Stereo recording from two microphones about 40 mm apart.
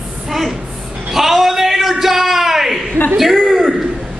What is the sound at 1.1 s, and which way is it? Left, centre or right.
A man's voice, centre.